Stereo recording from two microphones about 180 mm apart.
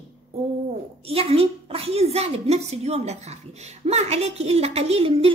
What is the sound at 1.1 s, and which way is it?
A woman's voice, 35° right (ahead or behind).